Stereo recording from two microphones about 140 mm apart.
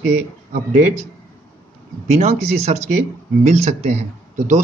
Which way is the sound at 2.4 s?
50° right (ahead or behind).